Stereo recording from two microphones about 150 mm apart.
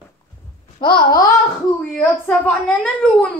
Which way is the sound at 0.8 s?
30° left (ahead or behind).